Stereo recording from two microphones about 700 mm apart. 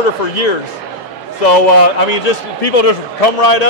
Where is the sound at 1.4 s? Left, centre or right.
Left.